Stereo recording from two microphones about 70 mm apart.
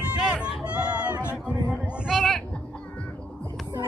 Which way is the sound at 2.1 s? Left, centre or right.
Centre.